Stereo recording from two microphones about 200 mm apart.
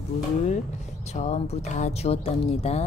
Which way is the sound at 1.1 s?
35° left (ahead or behind).